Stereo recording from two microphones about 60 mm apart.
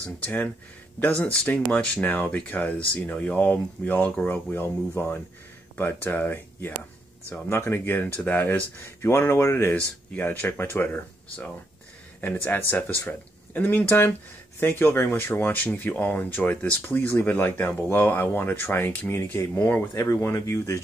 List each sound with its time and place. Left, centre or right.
0.9 s speech: left
4.3 s speech: left
9.8 s speech: left
10.4 s speech: left
12.2 s speech: left
19.9 s speech: left